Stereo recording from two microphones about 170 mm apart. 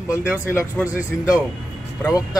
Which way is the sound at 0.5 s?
15° left (ahead or behind).